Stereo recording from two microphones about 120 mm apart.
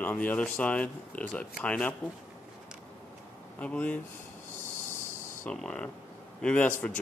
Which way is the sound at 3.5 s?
10° left (ahead or behind).